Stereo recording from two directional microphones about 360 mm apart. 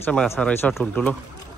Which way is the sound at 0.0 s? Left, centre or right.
Centre.